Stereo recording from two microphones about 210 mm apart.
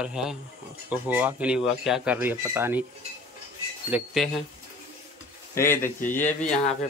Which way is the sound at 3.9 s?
5° right (ahead or behind).